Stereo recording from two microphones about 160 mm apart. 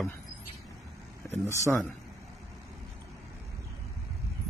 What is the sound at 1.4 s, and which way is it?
Speech, 15° left (ahead or behind).